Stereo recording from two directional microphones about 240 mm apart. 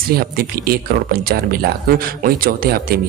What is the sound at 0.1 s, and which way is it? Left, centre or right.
Speech, right.